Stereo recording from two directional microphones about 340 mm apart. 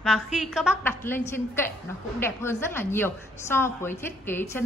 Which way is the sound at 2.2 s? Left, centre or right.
Centre.